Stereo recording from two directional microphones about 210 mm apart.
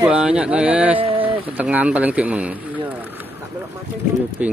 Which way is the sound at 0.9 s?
25° right (ahead or behind).